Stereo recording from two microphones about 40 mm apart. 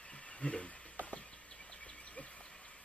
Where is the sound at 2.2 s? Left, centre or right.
Left.